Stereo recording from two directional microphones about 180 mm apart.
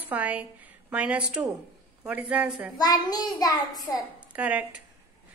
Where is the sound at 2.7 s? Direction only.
20° left (ahead or behind).